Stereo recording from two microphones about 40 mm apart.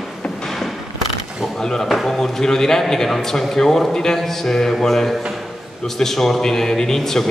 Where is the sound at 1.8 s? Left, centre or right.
Centre.